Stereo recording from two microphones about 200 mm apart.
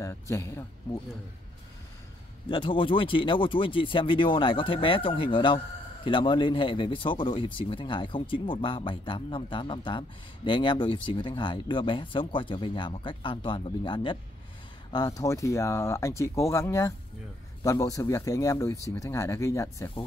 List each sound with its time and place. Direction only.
0.0 s speech: 15° left (ahead or behind)
2.4 s speech: 25° left (ahead or behind)